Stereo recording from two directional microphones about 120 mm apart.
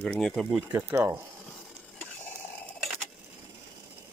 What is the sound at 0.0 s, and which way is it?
Speech, 5° left (ahead or behind).